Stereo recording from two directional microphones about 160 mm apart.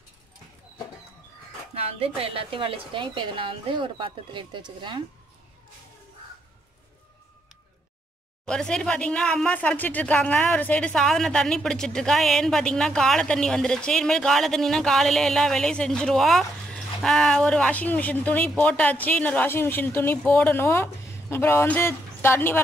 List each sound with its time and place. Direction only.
1.8 s a woman's voice: 40° right (ahead or behind)
8.5 s speech: 5° left (ahead or behind)